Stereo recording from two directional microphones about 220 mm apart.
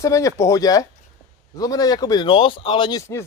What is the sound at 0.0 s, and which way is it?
A man's voice, 15° left (ahead or behind).